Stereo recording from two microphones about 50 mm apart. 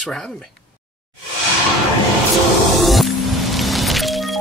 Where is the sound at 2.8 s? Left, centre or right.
Centre.